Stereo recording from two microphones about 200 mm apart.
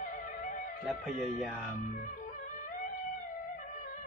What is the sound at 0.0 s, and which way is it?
Music, 40° left (ahead or behind).